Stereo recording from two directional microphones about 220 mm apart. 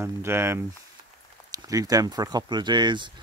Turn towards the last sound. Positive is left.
turn(degrees=-20)  # may be behind; listen again after turning